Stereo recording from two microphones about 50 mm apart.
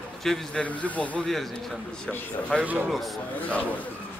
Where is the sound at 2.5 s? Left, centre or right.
Left.